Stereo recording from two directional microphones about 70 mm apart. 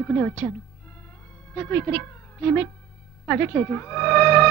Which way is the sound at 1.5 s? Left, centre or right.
Left.